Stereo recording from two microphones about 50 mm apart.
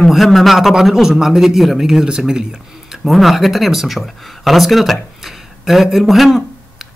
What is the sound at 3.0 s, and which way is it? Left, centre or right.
Speech, centre.